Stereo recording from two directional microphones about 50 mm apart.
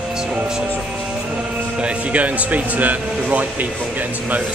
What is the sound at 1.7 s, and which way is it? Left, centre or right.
Speech, right.